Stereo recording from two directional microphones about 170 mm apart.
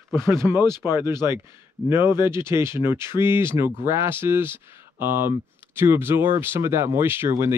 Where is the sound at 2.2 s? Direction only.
15° right (ahead or behind).